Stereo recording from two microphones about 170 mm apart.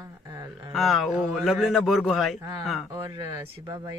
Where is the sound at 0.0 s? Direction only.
20° right (ahead or behind).